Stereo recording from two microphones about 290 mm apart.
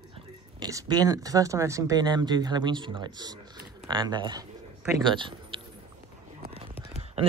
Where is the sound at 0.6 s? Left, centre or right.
Centre.